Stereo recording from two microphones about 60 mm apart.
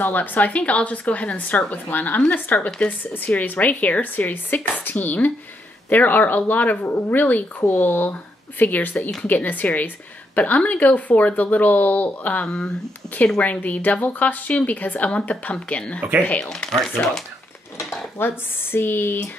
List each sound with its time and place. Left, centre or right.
0.0 s speech: left
12.4 s speech: centre
13.4 s speech: left; by 17.2 s centre
18.2 s speech: left